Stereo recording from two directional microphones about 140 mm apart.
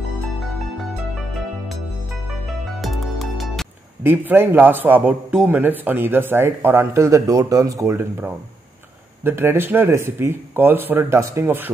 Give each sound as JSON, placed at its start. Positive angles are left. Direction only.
{"t": 2.8, "sound": "music", "side_deg": 0}
{"t": 4.0, "sound": "a man's voice", "side_deg": -15}